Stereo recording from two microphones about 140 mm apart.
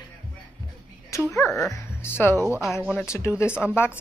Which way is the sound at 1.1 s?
20° left (ahead or behind).